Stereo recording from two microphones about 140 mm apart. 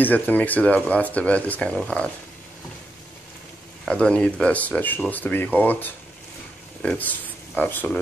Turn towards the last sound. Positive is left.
turn(degrees=15)  # may be behind; listen again after turning